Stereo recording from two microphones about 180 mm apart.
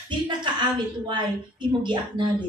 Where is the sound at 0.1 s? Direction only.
25° right (ahead or behind).